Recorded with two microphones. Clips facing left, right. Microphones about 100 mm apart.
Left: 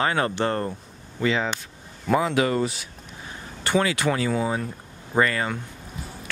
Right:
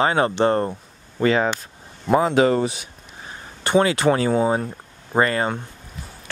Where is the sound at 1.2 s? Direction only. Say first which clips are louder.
Right 5 dB; 45° right (ahead or behind).